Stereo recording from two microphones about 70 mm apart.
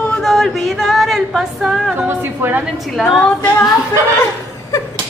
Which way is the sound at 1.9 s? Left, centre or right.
Right.